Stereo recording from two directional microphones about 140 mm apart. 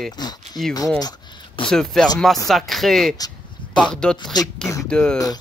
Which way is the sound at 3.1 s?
25° left (ahead or behind).